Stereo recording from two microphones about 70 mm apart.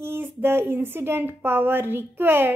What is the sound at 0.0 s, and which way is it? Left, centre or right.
A woman's voice, right.